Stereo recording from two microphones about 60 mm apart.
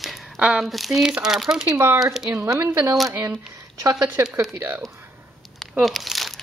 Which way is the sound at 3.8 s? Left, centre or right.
Right.